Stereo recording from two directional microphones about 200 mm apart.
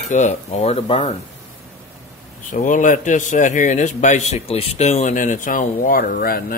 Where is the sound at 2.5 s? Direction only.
40° left (ahead or behind).